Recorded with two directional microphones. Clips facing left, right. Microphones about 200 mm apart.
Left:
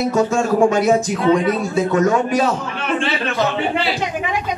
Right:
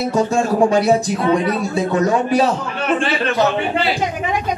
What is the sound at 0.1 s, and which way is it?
A man's voice, 35° right (ahead or behind).